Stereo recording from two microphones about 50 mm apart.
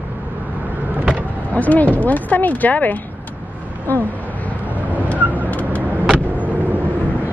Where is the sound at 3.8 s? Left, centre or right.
Left.